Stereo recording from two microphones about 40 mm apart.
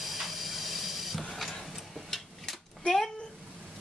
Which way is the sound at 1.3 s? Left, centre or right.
Centre.